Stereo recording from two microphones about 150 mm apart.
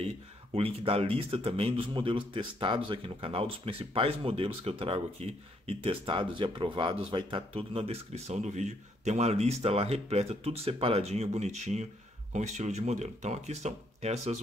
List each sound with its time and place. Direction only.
0.6 s a man's voice: 40° right (ahead or behind)